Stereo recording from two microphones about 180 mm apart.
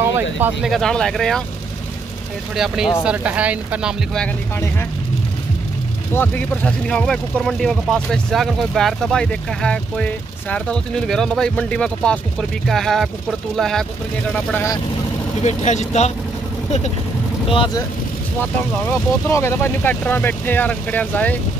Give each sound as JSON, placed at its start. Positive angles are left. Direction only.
{"t": 0.0, "sound": "speech", "side_deg": -10}
{"t": 0.7, "sound": "speech", "side_deg": 0}
{"t": 2.5, "sound": "speech", "side_deg": -5}
{"t": 6.1, "sound": "speech", "side_deg": 10}
{"t": 14.3, "sound": "speech", "side_deg": 15}
{"t": 15.4, "sound": "speech", "side_deg": 40}
{"t": 17.5, "sound": "speech", "side_deg": 30}
{"t": 19.2, "sound": "speech", "side_deg": 15}